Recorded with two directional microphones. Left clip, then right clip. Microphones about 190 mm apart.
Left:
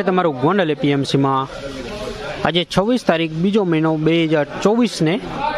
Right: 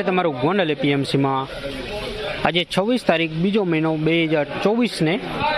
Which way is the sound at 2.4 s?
25° left (ahead or behind).